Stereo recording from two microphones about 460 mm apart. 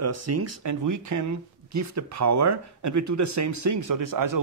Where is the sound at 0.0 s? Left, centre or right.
Right.